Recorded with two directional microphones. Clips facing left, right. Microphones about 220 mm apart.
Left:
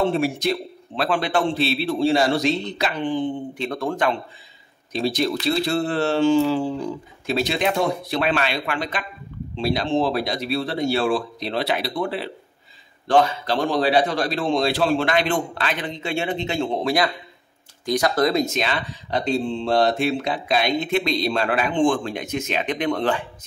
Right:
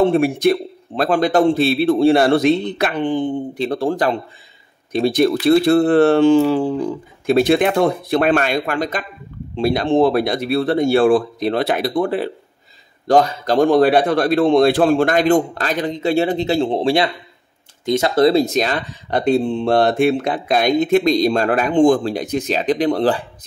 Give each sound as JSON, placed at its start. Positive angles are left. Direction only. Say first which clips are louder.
{"t": 0.1, "sound": "speech", "louder": "right 7 dB", "side_deg": -55}
{"t": 3.5, "sound": "speech", "louder": "right 6 dB", "side_deg": -35}
{"t": 4.9, "sound": "speech", "louder": "right 7 dB", "side_deg": -55}